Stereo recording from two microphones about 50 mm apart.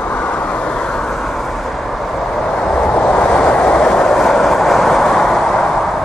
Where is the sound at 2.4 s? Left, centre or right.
Centre.